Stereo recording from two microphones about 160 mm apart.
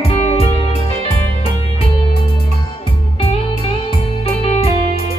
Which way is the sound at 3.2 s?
35° left (ahead or behind).